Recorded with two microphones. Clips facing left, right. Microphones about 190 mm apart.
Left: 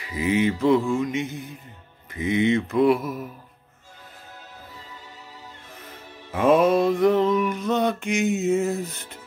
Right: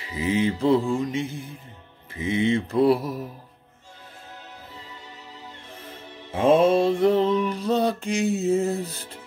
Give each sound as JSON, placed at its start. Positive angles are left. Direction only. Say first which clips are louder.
{"t": 0.0, "sound": "mantra", "louder": "left 1 dB", "side_deg": -30}
{"t": 6.3, "sound": "mantra", "louder": "even", "side_deg": -30}